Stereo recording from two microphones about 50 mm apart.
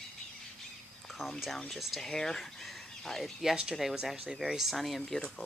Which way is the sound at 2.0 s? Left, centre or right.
Centre.